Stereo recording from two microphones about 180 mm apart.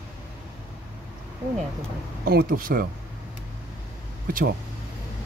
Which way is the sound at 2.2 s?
55° right (ahead or behind).